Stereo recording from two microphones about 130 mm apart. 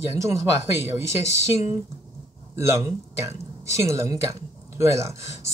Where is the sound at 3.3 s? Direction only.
20° right (ahead or behind).